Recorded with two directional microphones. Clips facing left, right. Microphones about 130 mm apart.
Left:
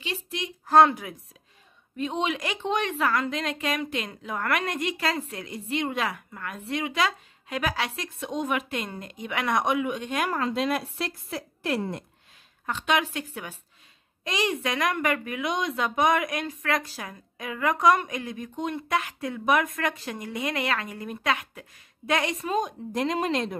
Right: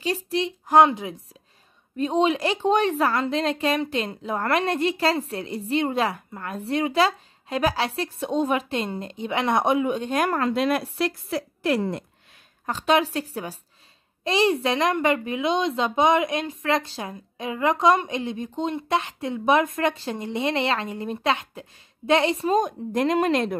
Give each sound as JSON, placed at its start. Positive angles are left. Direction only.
{"t": 0.0, "sound": "speech", "side_deg": -35}
{"t": 0.7, "sound": "a woman's voice", "side_deg": -15}
{"t": 2.0, "sound": "a woman's voice", "side_deg": -35}
{"t": 10.3, "sound": "speech", "side_deg": -60}
{"t": 12.6, "sound": "a woman's voice", "side_deg": -35}
{"t": 22.6, "sound": "speech", "side_deg": -55}